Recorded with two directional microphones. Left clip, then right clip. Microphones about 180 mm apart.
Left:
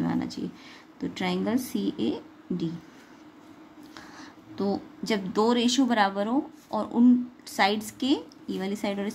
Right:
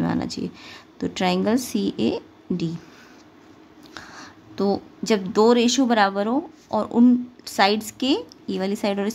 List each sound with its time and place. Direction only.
0.0 s speech: 35° right (ahead or behind)
3.9 s speech: 35° right (ahead or behind)